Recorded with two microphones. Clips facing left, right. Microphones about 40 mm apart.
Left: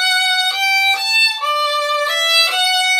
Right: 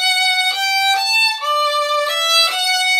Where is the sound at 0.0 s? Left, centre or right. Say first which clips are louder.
Even; centre.